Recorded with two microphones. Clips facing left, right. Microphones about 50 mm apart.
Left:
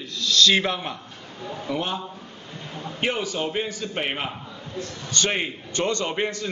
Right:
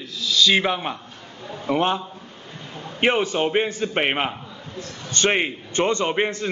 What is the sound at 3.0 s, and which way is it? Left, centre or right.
A man's voice, right.